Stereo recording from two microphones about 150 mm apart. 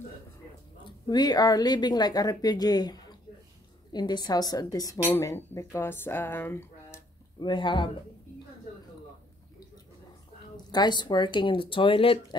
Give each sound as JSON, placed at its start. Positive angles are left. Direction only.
{"t": 1.0, "sound": "speech", "side_deg": 25}
{"t": 7.3, "sound": "speech", "side_deg": 30}
{"t": 10.7, "sound": "speech", "side_deg": 30}